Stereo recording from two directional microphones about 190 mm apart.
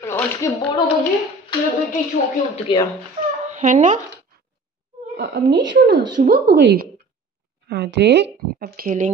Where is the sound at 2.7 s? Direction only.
25° left (ahead or behind).